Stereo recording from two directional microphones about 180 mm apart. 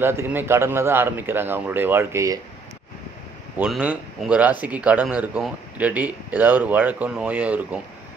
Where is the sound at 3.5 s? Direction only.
5° right (ahead or behind).